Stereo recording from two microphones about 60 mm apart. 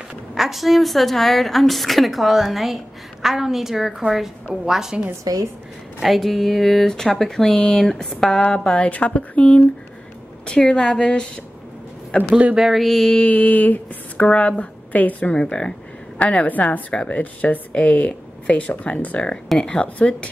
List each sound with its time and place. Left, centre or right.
0.3 s a woman's voice: centre
5.2 s speech: right
5.9 s a woman's voice: centre
12.5 s a woman's voice: centre
12.8 s a woman's voice: centre
13.3 s speech: left
16.9 s a woman's voice: centre
19.5 s a woman's voice: centre